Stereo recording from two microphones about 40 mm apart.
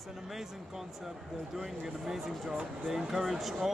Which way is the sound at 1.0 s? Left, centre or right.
Centre.